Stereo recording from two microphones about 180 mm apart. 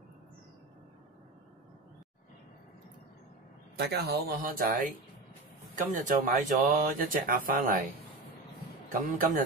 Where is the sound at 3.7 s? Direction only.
65° right (ahead or behind); by 4.9 s 45° right (ahead or behind).